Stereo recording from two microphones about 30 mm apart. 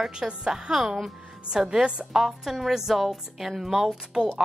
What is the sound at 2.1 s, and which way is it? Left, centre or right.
A woman's voice, centre.